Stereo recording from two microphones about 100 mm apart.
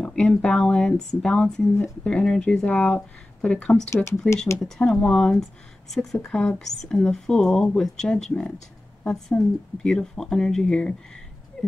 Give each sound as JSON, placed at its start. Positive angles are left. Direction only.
{"t": 0.0, "sound": "speech", "side_deg": 5}
{"t": 3.9, "sound": "speech", "side_deg": 30}
{"t": 4.6, "sound": "speech", "side_deg": 5}